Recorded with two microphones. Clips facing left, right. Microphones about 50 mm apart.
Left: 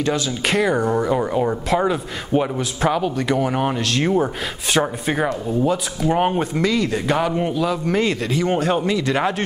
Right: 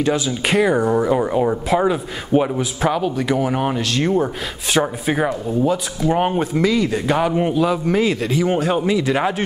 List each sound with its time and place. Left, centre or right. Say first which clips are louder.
0.0 s speech: right 2 dB; centre